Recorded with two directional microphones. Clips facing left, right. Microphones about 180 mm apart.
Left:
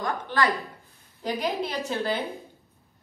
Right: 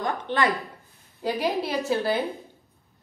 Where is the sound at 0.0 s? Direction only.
25° right (ahead or behind).